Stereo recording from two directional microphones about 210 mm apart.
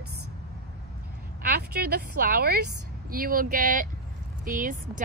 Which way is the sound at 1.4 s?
45° right (ahead or behind).